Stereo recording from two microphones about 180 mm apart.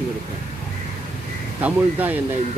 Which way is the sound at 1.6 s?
10° right (ahead or behind).